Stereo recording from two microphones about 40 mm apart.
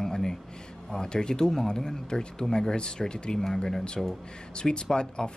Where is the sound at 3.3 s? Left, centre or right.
Centre.